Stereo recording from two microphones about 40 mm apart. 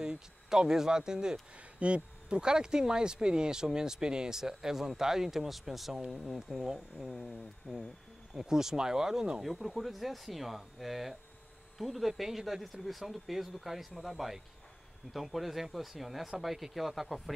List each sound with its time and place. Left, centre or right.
0.0 s speech: centre
1.6 s speech: right; by 7.1 s centre
7.7 s speech: left
8.4 s speech: centre
9.4 s speech: centre